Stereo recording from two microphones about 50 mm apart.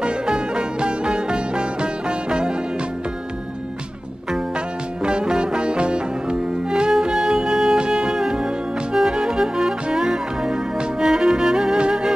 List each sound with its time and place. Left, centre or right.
0.0 s music: centre
5.0 s music: centre